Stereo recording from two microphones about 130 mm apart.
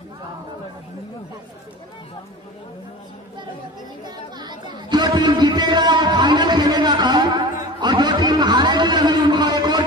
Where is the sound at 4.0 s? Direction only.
35° right (ahead or behind).